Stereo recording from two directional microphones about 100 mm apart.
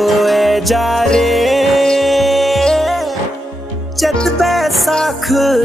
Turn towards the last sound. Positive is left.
turn(degrees=0)  # may be behind; listen again after turning